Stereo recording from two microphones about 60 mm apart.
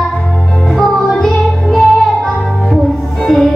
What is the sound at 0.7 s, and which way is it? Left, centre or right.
Music, centre.